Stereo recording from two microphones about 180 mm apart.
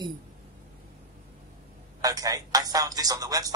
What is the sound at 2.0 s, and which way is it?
A man's voice, 20° right (ahead or behind).